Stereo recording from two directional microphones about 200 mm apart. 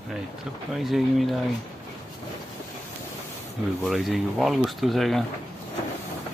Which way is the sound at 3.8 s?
Centre (ahead or behind).